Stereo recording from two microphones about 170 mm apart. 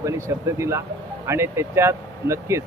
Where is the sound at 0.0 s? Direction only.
15° right (ahead or behind).